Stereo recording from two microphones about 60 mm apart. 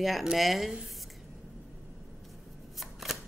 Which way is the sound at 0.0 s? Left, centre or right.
Centre.